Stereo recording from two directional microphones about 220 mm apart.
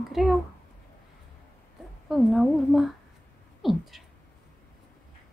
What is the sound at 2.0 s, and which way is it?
Speech, centre (ahead or behind).